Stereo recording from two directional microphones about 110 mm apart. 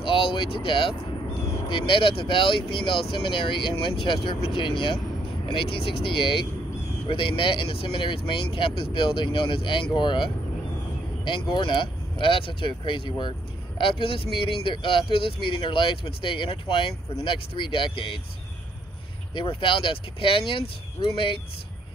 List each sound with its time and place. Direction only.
0.0 s speech: 50° left (ahead or behind)
11.5 s speech: 45° left (ahead or behind)
19.3 s speech: 50° left (ahead or behind)